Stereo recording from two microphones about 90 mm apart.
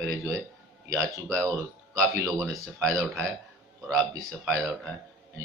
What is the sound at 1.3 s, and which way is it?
Speech, 30° right (ahead or behind).